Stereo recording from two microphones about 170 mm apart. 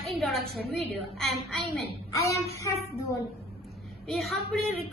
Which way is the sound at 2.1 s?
20° left (ahead or behind).